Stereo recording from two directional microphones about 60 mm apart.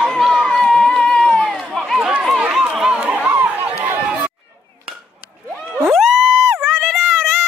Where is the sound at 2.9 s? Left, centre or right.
Right.